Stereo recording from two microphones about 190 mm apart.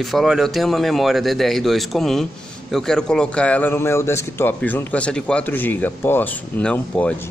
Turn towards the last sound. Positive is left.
turn(degrees=5)  # may be behind; listen again after turning